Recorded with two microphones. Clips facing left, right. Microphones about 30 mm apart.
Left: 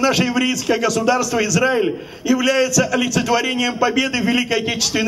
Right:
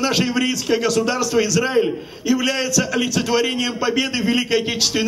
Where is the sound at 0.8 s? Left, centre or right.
Centre.